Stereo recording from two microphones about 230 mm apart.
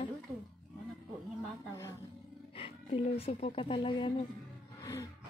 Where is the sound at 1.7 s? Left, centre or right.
Centre.